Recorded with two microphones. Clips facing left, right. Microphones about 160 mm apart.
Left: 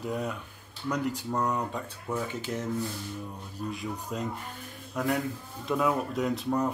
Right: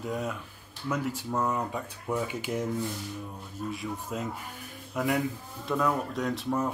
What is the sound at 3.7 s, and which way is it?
A woman's voice, centre (ahead or behind).